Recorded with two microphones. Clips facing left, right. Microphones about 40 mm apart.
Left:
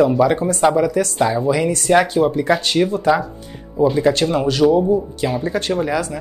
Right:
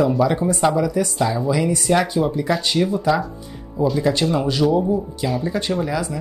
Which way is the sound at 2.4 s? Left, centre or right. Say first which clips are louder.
Left 3 dB; left.